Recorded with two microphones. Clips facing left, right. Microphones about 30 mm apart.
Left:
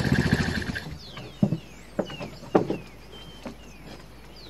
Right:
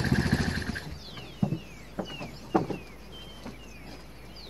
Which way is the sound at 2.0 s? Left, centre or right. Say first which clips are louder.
Left 6 dB; left.